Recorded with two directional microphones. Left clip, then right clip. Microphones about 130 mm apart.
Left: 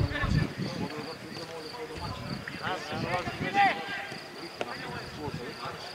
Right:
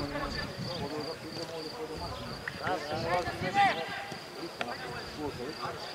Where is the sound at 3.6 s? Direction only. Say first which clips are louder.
Left 2 dB; centre (ahead or behind).